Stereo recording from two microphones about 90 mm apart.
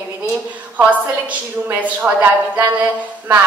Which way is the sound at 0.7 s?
20° right (ahead or behind).